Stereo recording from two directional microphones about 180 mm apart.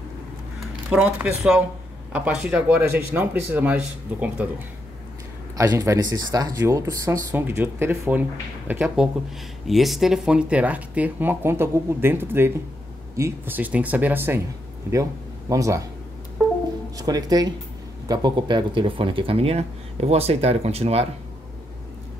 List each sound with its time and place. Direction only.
0.8 s speech: 5° right (ahead or behind)
5.6 s speech: 15° right (ahead or behind)
15.5 s speech: 20° right (ahead or behind)
17.0 s speech: 20° right (ahead or behind)